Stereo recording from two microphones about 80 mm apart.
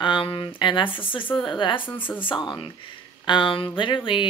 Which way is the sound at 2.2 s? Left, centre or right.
Left.